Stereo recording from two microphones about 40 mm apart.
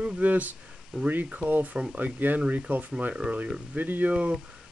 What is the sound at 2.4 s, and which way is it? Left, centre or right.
Speech, right.